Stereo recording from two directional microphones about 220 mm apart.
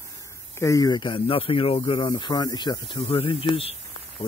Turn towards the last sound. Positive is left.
turn(degrees=25)  # may be behind; listen again after turning